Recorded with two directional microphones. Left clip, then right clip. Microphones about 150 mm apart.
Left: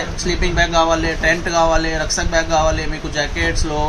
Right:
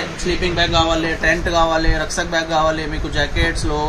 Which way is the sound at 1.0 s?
Centre (ahead or behind).